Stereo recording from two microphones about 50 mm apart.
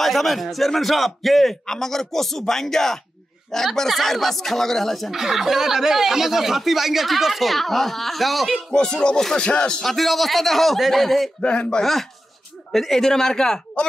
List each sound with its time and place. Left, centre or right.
0.0 s speech: centre
5.1 s speech: centre
8.7 s speech: centre
9.8 s speech: centre
11.4 s speech: centre
11.8 s speech: centre